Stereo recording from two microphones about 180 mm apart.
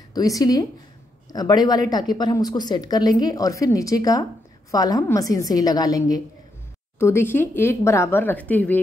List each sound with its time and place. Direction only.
0.1 s a woman's voice: 20° left (ahead or behind)